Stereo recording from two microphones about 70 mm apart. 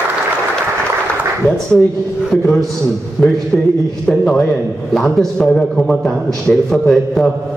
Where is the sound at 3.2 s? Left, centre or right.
Centre.